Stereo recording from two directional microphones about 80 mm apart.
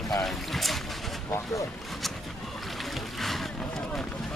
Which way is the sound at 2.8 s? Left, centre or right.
Centre.